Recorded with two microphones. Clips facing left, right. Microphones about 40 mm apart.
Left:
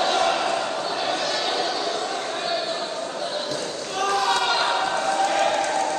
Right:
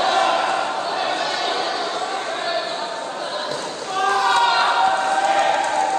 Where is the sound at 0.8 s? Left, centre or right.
Centre.